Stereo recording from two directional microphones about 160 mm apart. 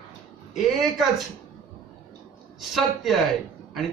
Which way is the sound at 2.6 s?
Centre (ahead or behind).